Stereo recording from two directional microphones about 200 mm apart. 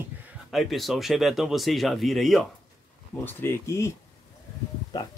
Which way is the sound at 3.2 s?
15° left (ahead or behind).